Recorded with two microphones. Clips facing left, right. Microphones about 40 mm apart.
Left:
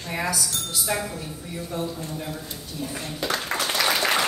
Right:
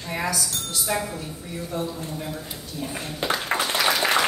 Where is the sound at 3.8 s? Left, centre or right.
Centre.